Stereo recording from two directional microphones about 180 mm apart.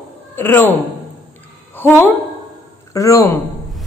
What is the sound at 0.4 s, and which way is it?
Speech, 10° left (ahead or behind).